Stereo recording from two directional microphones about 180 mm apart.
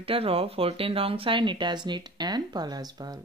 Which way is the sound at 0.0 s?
30° right (ahead or behind).